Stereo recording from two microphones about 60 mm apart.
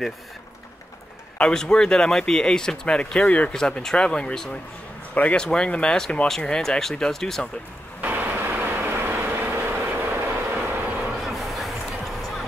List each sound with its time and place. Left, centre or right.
1.4 s speech: centre
5.1 s speech: left
5.4 s speech: centre
8.0 s vehicle: right
11.0 s music: centre